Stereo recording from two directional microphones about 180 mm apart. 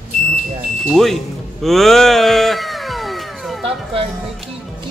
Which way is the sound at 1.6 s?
Centre (ahead or behind).